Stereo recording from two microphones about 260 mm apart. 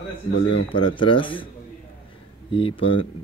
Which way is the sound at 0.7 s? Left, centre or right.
Centre.